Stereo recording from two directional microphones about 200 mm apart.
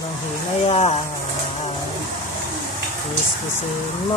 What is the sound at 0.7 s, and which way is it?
Music, 30° left (ahead or behind).